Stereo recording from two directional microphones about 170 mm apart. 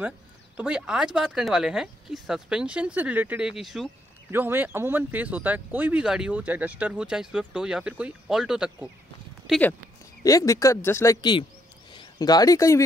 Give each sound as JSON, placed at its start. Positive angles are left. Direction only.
{"t": 0.6, "sound": "speech", "side_deg": -5}
{"t": 4.3, "sound": "speech", "side_deg": -10}
{"t": 9.5, "sound": "speech", "side_deg": 10}